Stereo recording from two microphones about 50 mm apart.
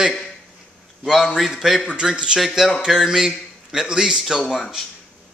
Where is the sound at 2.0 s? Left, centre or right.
Centre.